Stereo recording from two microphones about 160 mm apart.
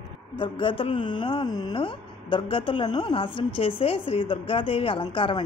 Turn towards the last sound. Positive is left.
turn(degrees=30)  # may be behind; listen again after turning